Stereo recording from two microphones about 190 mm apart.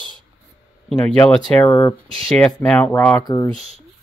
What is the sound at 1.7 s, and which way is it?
Speech, 25° left (ahead or behind).